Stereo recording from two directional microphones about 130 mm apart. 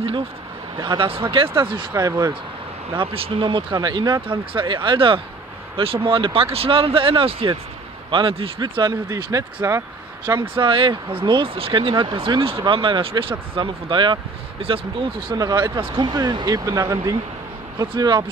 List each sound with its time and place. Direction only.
0.7 s speech: 35° right (ahead or behind)
1.5 s speech: 20° right (ahead or behind)
1.8 s speech: 30° right (ahead or behind)
2.9 s speech: 45° right (ahead or behind); by 10.4 s 25° right (ahead or behind)
10.4 s speech: 40° right (ahead or behind)
15.3 s speech: 30° right (ahead or behind)